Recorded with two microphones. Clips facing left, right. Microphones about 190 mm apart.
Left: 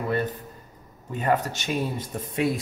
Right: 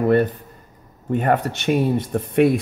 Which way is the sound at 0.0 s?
60° right (ahead or behind).